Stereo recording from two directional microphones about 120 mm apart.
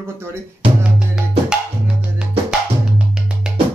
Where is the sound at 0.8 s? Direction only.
5° right (ahead or behind).